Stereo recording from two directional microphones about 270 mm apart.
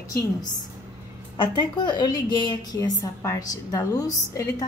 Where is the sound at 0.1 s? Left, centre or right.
Centre.